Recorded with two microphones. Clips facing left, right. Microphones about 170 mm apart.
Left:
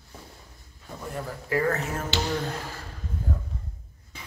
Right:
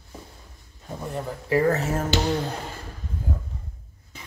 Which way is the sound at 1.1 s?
25° right (ahead or behind).